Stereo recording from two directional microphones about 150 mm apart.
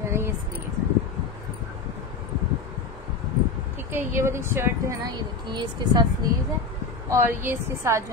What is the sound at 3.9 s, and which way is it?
Speech, 15° right (ahead or behind).